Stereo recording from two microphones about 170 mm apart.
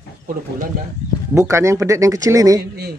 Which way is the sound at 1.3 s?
15° right (ahead or behind).